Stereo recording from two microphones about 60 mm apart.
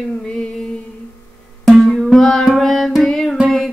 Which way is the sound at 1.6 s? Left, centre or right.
Centre.